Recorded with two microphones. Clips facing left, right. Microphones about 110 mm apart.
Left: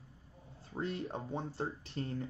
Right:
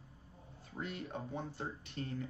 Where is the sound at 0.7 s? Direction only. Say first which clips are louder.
Left 4 dB; 30° left (ahead or behind).